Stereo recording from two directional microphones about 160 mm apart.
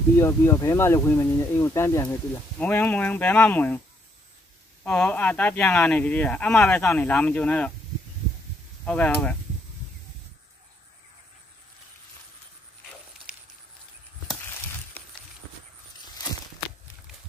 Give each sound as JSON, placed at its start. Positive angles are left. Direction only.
{"t": 0.2, "sound": "speech", "side_deg": 20}
{"t": 4.8, "sound": "speech", "side_deg": 5}
{"t": 8.8, "sound": "speech", "side_deg": 5}